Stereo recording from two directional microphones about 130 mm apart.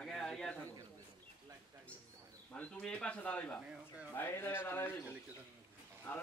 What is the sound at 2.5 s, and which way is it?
A man's voice, 10° left (ahead or behind).